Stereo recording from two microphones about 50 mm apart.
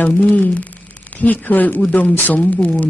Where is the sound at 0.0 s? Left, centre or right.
Left.